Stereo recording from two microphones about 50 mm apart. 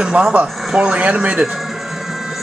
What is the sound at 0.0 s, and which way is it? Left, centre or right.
Speech, right.